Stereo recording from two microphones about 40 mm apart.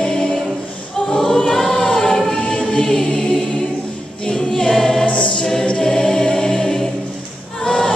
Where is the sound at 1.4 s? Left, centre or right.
Centre.